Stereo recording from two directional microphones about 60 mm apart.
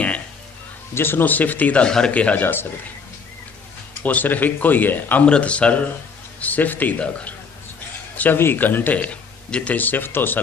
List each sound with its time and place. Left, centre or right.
0.9 s speech: left
1.9 s speech: centre
2.1 s speech: left
4.0 s speech: left
5.2 s speech: centre
8.4 s speech: left